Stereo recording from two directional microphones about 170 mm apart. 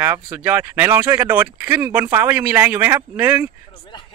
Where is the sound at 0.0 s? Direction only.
10° right (ahead or behind).